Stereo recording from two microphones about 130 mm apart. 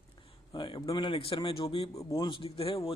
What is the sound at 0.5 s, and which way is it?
Speech, 40° left (ahead or behind).